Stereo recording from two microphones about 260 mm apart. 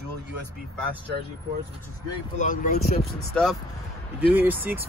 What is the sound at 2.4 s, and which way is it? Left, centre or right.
Speech, left.